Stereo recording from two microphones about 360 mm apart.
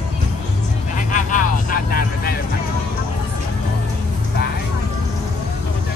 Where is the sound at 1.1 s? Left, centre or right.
Left.